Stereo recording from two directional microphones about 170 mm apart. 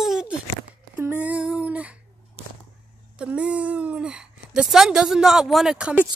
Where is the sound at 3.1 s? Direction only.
5° right (ahead or behind).